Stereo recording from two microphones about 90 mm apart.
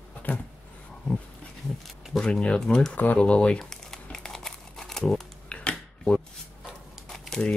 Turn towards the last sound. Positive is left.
turn(degrees=10)  # may be behind; listen again after turning